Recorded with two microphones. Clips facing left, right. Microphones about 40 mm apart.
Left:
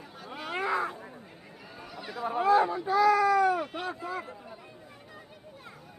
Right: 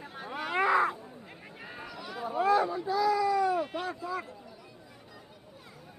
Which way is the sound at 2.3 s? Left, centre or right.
Left.